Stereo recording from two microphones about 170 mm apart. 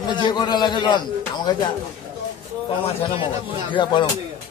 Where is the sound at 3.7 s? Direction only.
30° left (ahead or behind).